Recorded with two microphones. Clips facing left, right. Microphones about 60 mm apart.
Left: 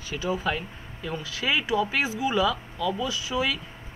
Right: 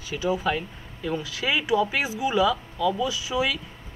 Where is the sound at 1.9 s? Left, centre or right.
Centre.